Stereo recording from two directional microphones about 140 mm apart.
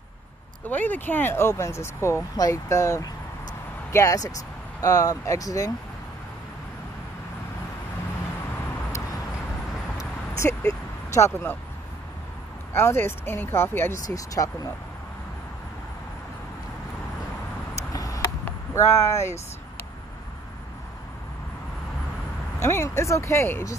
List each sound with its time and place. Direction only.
0.7 s speech: 15° left (ahead or behind)
9.9 s a sound: 20° left (ahead or behind)
11.1 s speech: 20° left (ahead or behind)
12.7 s speech: 15° left (ahead or behind)
17.7 s a sound: 25° left (ahead or behind)
22.6 s speech: 20° left (ahead or behind)